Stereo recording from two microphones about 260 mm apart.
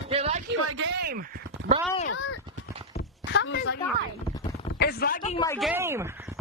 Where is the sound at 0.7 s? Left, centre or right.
Right.